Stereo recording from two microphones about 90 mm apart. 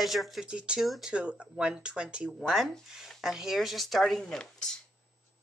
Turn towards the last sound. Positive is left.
turn(degrees=10)  # may be behind; listen again after turning